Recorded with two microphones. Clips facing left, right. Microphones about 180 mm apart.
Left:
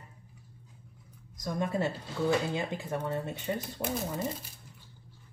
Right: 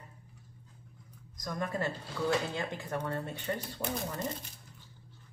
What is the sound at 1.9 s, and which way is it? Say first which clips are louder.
Speech: left 3 dB; 10° left (ahead or behind).